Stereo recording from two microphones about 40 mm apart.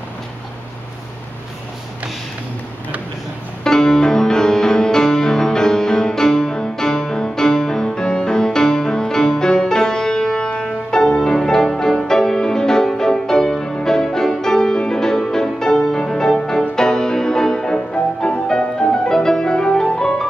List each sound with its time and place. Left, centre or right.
3.6 s music: centre
17.9 s music: left